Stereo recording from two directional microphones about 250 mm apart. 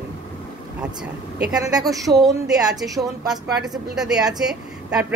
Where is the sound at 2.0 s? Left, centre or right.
Centre.